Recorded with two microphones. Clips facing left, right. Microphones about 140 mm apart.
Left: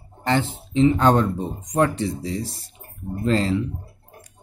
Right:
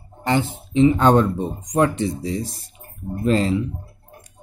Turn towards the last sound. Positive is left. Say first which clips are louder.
# right 2 dB
turn(degrees=-20)  # may be behind; listen again after turning